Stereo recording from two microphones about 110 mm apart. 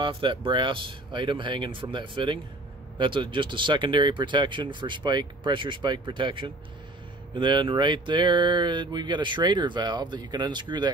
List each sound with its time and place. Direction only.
0.0 s speech: 50° right (ahead or behind)